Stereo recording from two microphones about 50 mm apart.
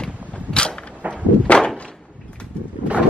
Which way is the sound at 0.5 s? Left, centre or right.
Centre.